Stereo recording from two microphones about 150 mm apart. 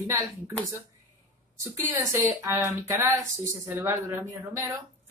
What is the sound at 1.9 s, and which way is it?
Speech, 20° right (ahead or behind).